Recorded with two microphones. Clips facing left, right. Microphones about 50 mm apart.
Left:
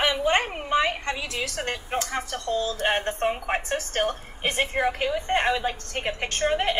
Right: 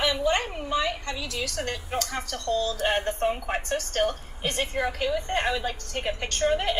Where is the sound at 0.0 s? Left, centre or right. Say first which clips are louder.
Left 2 dB; left.